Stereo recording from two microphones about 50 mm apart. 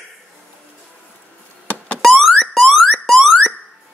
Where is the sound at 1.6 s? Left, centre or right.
Left.